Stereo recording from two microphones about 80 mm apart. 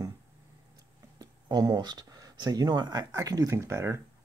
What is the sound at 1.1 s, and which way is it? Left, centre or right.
Speech, right.